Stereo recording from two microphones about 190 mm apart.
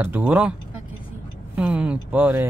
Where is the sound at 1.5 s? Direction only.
5° right (ahead or behind).